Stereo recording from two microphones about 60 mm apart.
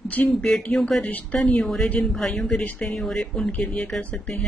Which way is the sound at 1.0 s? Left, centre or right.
Left.